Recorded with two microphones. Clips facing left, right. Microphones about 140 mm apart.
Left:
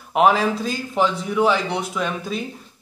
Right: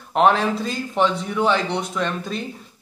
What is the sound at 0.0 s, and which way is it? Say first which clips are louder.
Speech: even; 5° left (ahead or behind).